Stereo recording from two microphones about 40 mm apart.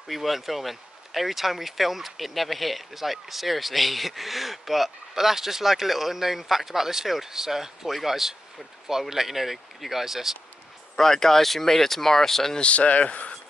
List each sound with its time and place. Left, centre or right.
0.1 s speech: centre
11.0 s speech: centre
12.5 s speech: left